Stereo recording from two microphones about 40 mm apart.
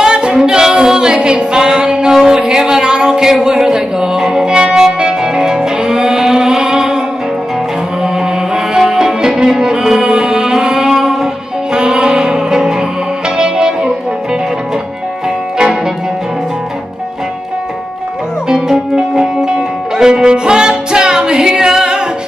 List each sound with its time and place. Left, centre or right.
0.0 s music: centre
2.2 s a sound: centre
4.7 s music: centre
8.0 s music: centre
18.5 s music: centre